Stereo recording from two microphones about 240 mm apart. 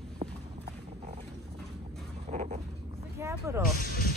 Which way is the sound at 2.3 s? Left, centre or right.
Right.